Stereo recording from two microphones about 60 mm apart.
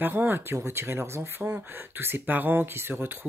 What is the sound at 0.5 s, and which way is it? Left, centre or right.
Speech, right.